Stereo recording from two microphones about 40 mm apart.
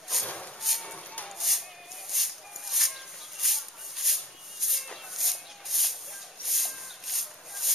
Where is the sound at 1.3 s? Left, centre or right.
Centre.